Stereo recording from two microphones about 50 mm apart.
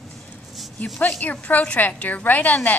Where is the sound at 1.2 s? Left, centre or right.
Left.